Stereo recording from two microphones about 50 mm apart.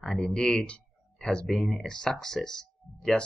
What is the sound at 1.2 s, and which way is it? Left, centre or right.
Speech, centre.